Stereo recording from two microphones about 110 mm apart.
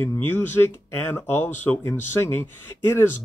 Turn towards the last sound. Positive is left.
turn(degrees=20)  # may be behind; listen again after turning